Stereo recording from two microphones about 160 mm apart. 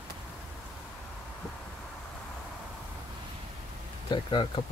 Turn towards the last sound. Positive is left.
turn(degrees=30)  # may be behind; listen again after turning